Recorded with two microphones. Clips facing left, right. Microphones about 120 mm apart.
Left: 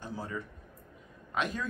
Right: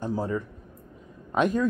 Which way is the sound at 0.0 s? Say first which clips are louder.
Right 10 dB; 45° right (ahead or behind).